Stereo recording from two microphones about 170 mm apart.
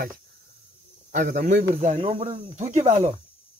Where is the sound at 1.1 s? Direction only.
50° right (ahead or behind).